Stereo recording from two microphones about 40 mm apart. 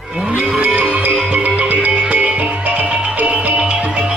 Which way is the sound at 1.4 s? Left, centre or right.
Right.